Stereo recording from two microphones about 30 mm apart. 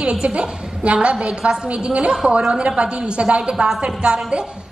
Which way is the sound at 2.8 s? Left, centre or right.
Right.